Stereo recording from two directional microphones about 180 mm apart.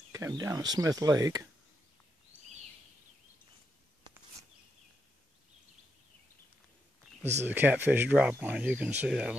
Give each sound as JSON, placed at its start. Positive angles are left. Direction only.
{"t": 0.1, "sound": "speech", "side_deg": -15}
{"t": 2.3, "sound": "a sound", "side_deg": -10}
{"t": 7.4, "sound": "speech", "side_deg": -10}